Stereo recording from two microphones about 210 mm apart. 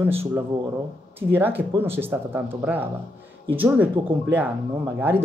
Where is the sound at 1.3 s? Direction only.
10° right (ahead or behind).